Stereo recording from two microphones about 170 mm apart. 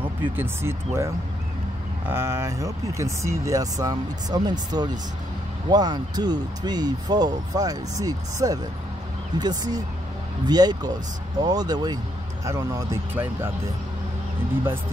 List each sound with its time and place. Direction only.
0.0 s speech: 10° right (ahead or behind)